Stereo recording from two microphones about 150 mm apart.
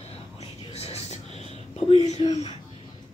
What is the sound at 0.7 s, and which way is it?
Whispering, 40° left (ahead or behind).